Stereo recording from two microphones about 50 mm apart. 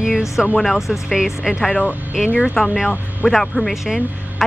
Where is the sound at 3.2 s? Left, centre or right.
Centre.